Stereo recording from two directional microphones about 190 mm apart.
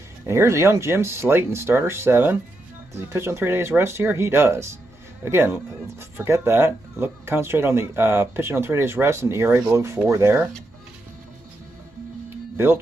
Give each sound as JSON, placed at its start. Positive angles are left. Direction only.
{"t": 0.3, "sound": "speech", "side_deg": -15}